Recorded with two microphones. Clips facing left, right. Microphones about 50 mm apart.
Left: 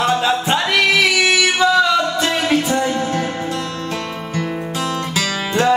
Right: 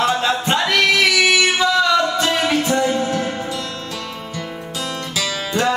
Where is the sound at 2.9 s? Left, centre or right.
Left.